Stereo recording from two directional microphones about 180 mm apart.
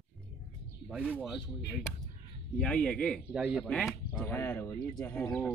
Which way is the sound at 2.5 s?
5° left (ahead or behind).